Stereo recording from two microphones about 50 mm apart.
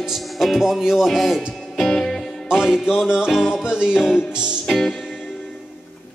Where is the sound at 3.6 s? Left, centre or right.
Centre.